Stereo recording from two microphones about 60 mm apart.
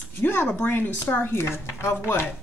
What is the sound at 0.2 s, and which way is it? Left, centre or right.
Speech, left.